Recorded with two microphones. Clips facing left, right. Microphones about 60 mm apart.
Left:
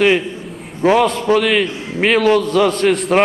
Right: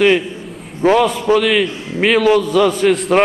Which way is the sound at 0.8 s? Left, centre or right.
Centre.